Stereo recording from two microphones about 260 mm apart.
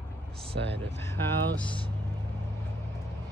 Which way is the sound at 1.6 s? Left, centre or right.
Centre.